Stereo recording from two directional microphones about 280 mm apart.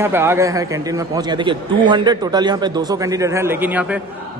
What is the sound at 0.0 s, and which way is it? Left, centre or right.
A man's voice, centre.